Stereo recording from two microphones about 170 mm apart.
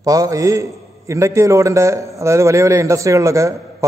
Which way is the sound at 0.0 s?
20° right (ahead or behind).